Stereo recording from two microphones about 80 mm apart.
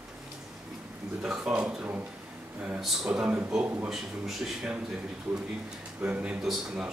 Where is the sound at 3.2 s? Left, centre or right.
Centre.